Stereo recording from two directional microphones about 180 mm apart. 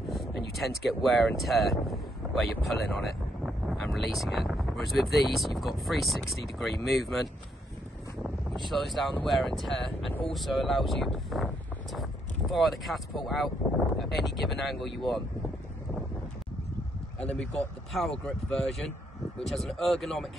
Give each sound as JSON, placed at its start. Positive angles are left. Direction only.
{"t": 0.1, "sound": "a sound", "side_deg": 0}
{"t": 1.4, "sound": "speech", "side_deg": 0}
{"t": 8.6, "sound": "speech", "side_deg": 0}
{"t": 17.2, "sound": "speech", "side_deg": 5}